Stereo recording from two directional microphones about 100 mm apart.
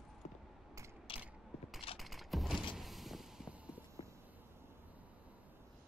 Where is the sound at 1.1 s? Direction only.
60° left (ahead or behind).